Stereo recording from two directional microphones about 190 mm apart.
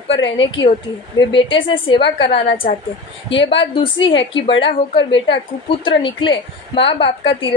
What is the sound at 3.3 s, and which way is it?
Speech, 70° left (ahead or behind).